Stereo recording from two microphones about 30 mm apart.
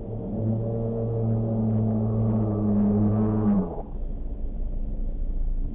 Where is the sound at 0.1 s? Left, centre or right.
Centre.